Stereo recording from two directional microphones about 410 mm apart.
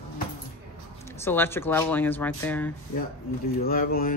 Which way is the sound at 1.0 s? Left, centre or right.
Centre.